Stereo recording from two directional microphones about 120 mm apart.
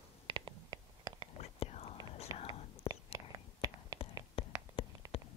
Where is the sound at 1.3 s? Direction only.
60° left (ahead or behind).